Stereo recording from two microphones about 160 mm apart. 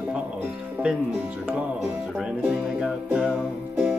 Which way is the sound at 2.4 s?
10° right (ahead or behind).